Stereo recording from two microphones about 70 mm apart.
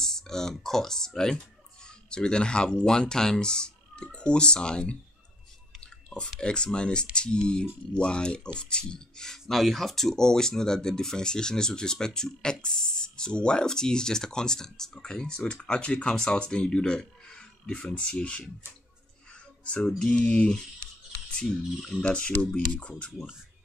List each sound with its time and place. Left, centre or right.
0.0 s speech: centre
6.4 s speech: centre
19.6 s music: centre
20.0 s speech: centre